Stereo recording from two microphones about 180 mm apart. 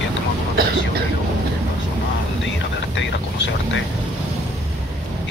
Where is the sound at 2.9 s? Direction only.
85° left.